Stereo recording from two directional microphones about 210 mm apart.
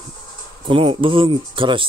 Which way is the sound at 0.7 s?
25° right (ahead or behind).